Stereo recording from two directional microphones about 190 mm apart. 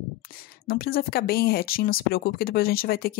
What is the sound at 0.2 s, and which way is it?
Speech, 50° left (ahead or behind).